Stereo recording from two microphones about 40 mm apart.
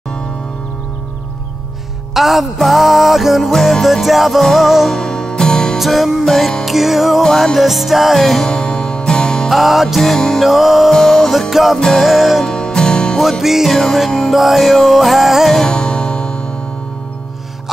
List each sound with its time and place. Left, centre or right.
2.1 s music: centre
3.5 s music: centre
3.8 s music: centre
4.9 s music: centre
5.8 s music: centre
7.2 s music: centre
7.5 s music: centre
8.5 s music: centre
9.5 s music: centre
10.9 s music: centre
12.5 s music: centre
13.2 s music: centre
15.5 s music: centre